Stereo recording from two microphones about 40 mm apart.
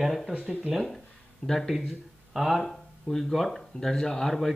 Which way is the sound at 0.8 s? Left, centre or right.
Centre.